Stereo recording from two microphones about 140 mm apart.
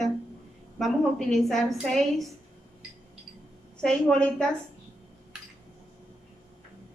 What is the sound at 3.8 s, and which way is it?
Speech, 5° left (ahead or behind).